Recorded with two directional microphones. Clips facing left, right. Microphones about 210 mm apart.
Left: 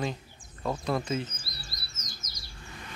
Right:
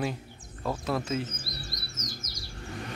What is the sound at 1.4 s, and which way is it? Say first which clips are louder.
Chirp: right 6 dB; 50° right (ahead or behind).